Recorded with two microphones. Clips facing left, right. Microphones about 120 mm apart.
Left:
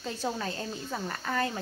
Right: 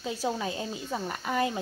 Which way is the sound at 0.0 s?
10° right (ahead or behind).